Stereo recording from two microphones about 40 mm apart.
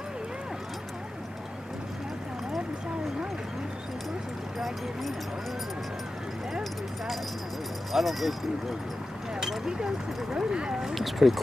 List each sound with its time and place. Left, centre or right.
4.6 s a sound: centre
7.9 s speech: centre
9.7 s speech: centre